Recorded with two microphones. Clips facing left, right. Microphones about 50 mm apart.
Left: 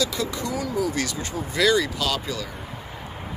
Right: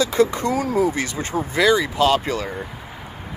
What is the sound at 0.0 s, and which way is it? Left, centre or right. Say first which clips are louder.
Speech: right 8 dB; right.